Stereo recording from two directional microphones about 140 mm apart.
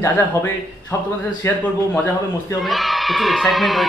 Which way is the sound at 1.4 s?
15° left (ahead or behind).